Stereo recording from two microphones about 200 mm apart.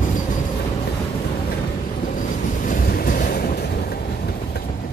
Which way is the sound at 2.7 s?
45° left (ahead or behind).